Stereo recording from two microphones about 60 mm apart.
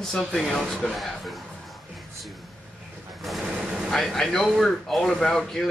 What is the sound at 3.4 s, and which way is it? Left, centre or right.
Gunshot, centre.